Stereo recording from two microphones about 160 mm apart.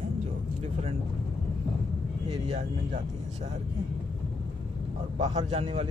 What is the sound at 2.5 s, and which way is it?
Speech, 45° right (ahead or behind).